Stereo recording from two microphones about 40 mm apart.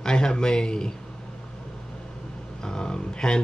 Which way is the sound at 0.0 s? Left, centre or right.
Centre.